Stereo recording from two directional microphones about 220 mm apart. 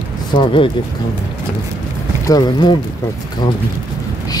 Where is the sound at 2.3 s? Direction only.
20° left (ahead or behind).